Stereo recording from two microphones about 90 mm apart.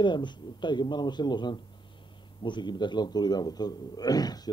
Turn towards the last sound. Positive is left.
turn(degrees=45)  # may be behind; listen again after turning